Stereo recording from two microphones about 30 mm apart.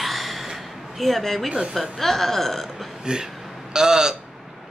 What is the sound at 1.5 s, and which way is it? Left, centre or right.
Speech, right.